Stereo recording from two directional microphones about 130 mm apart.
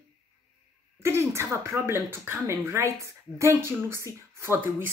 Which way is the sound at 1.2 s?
20° right (ahead or behind).